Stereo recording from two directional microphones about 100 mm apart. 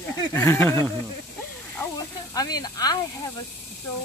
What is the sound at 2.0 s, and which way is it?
Speech, 40° left (ahead or behind).